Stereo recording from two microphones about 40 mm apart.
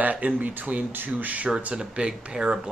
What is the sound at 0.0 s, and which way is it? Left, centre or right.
Speech, right.